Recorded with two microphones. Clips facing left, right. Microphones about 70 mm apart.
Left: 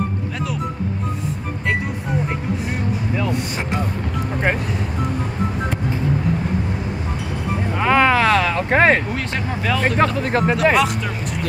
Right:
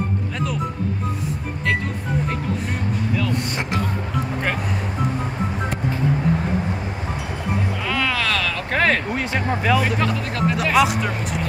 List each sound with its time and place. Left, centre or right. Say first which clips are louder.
7.8 s a sound: left 10 dB; left
9.8 s speech: left 5 dB; left
10.6 s speech: even; centre